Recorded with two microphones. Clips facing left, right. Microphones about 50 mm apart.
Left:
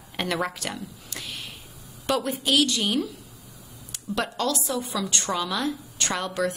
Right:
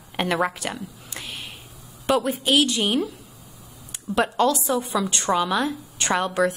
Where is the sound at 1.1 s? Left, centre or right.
Centre.